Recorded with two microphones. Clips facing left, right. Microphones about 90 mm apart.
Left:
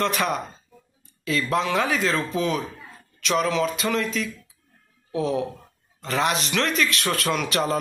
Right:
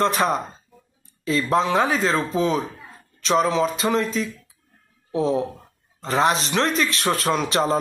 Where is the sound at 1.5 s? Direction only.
35° right (ahead or behind).